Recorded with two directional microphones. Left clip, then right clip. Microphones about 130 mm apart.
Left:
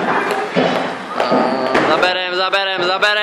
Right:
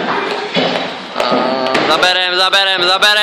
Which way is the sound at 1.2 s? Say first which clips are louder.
Right 2 dB; centre (ahead or behind).